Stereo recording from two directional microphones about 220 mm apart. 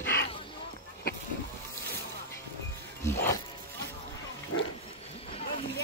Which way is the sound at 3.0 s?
10° left (ahead or behind).